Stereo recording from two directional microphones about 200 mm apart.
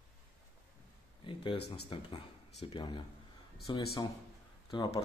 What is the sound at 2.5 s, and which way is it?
Speech, 25° left (ahead or behind).